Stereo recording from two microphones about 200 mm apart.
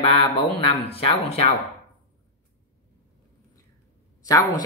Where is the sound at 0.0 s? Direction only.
30° left (ahead or behind).